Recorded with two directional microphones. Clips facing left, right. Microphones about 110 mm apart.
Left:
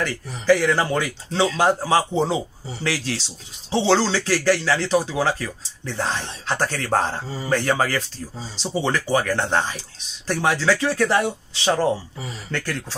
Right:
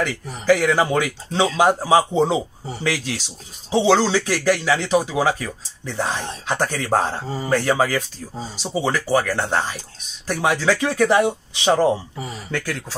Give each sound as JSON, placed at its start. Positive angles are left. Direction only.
{"t": 0.0, "sound": "speech", "side_deg": -10}